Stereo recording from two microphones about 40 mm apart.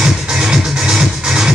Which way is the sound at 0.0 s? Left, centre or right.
Centre.